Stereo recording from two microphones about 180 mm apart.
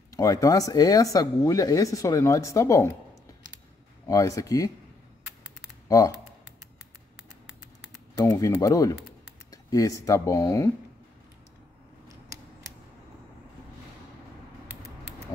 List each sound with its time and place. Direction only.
0.1 s speech: 20° left (ahead or behind)
4.1 s speech: 20° left (ahead or behind)
5.9 s speech: 20° left (ahead or behind)
8.1 s speech: 20° left (ahead or behind)